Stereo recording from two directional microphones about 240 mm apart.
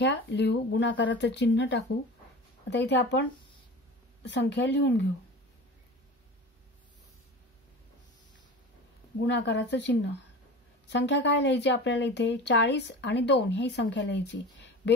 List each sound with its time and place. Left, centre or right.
0.0 s speech: left
9.2 s speech: left